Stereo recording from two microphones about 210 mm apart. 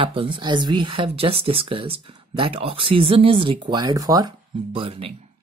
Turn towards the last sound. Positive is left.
turn(degrees=-25)  # may be behind; listen again after turning